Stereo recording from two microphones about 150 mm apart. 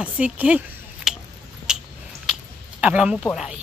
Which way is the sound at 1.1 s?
5° right (ahead or behind).